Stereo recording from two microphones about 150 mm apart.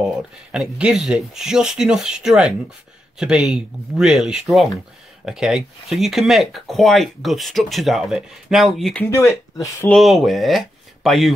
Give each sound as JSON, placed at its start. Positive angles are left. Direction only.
{"t": 0.5, "sound": "speech", "side_deg": -5}
{"t": 9.1, "sound": "speech", "side_deg": 20}
{"t": 9.8, "sound": "speech", "side_deg": 0}